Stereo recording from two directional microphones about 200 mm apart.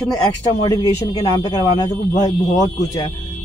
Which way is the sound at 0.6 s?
20° left (ahead or behind).